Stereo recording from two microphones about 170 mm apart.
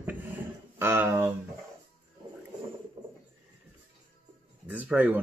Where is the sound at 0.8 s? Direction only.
15° right (ahead or behind).